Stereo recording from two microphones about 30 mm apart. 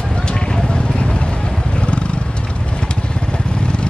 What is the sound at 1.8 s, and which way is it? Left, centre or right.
Wild animals, left.